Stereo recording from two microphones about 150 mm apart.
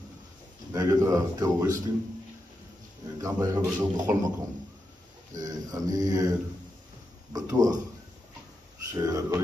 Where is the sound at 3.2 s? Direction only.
25° right (ahead or behind).